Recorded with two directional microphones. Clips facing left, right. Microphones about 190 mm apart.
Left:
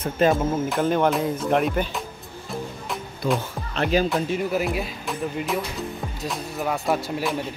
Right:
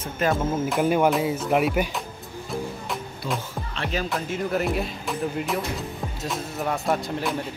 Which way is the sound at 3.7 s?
40° left (ahead or behind).